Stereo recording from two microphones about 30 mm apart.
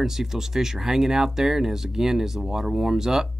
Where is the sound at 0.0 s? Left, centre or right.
Centre.